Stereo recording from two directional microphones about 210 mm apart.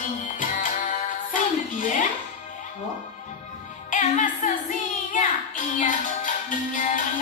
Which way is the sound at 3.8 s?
35° left (ahead or behind).